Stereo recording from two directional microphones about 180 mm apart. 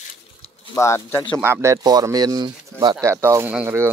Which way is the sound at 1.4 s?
15° right (ahead or behind).